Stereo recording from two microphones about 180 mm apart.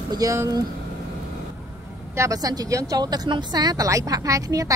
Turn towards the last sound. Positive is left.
turn(degrees=-20)  # may be behind; listen again after turning